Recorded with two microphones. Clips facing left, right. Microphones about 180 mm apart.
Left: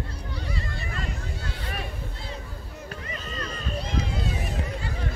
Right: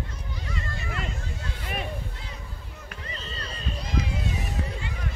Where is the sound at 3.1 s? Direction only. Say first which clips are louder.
Left 3 dB; 30° right (ahead or behind).